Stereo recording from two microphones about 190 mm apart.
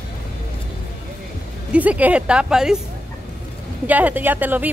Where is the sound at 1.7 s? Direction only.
5° right (ahead or behind).